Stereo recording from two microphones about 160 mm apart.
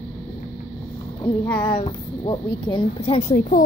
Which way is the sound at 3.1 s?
50° left (ahead or behind).